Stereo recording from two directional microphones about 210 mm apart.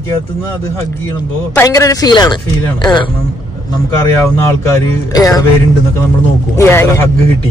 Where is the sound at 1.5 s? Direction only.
15° left (ahead or behind).